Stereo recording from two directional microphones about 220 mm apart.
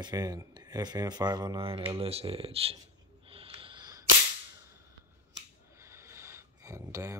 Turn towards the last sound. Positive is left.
turn(degrees=-15)  # may be behind; listen again after turning